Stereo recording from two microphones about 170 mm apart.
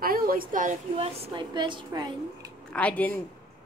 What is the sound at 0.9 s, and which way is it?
A woman's voice, 35° right (ahead or behind).